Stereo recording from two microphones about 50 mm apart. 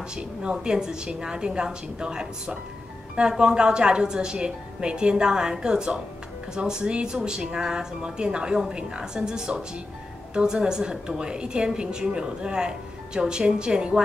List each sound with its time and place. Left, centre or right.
0.1 s a woman's voice: right